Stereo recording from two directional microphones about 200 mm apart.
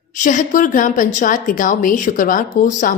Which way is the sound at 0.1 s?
40° left (ahead or behind).